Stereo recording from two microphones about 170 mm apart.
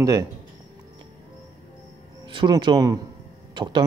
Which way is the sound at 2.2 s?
30° right (ahead or behind).